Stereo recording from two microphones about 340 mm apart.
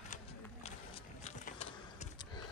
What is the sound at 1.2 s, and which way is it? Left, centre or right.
Mechanisms, centre.